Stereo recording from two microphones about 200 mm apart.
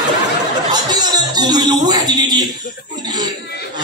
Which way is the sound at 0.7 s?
20° right (ahead or behind).